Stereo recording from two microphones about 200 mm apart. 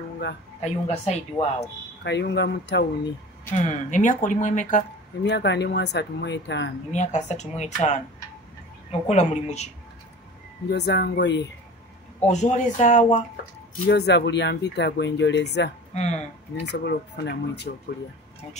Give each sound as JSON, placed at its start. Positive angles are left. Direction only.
{"t": 0.6, "sound": "speech", "side_deg": 35}
{"t": 2.0, "sound": "speech", "side_deg": 60}
{"t": 3.5, "sound": "speech", "side_deg": 35}
{"t": 5.2, "sound": "speech", "side_deg": 60}
{"t": 6.9, "sound": "speech", "side_deg": 35}
{"t": 9.0, "sound": "speech", "side_deg": 35}
{"t": 10.7, "sound": "speech", "side_deg": 60}
{"t": 12.3, "sound": "speech", "side_deg": 35}
{"t": 13.8, "sound": "speech", "side_deg": 60}
{"t": 15.9, "sound": "speech", "side_deg": 35}
{"t": 16.6, "sound": "speech", "side_deg": 55}